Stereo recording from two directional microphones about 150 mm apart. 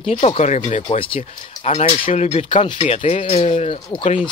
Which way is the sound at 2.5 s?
35° left (ahead or behind).